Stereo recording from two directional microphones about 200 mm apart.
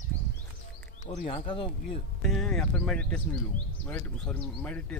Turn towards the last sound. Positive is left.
turn(degrees=5)  # may be behind; listen again after turning